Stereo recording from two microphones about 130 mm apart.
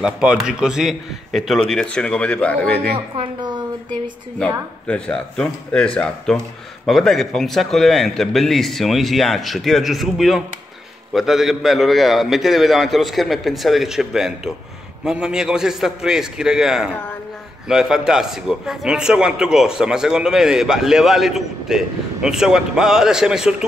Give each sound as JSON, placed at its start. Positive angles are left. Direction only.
{"t": 0.0, "sound": "a man's voice", "side_deg": -5}
{"t": 3.2, "sound": "a woman's voice", "side_deg": -35}
{"t": 4.4, "sound": "a man's voice", "side_deg": 10}